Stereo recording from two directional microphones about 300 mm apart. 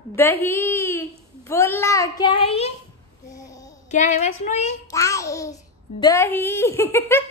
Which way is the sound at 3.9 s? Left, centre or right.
Left.